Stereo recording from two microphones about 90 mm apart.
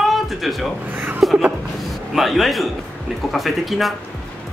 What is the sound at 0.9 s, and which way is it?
Chuckle, 20° right (ahead or behind).